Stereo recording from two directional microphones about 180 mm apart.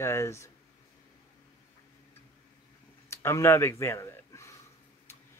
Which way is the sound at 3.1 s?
15° left (ahead or behind).